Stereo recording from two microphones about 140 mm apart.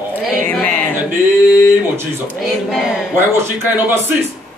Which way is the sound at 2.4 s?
Centre (ahead or behind).